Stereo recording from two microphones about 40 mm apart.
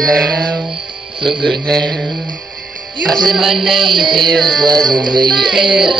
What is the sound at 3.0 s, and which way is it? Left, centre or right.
Music, centre.